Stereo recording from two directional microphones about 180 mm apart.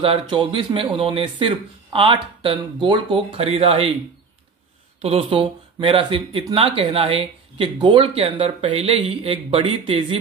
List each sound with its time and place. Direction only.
0.0 s speech: 25° right (ahead or behind)
5.0 s speech: 30° right (ahead or behind)